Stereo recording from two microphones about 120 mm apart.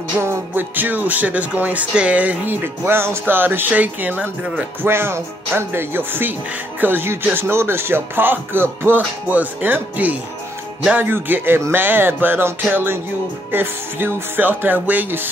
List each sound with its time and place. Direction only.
0.2 s music: 20° right (ahead or behind)